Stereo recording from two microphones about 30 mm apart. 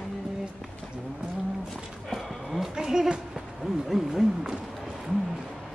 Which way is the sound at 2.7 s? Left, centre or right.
Centre.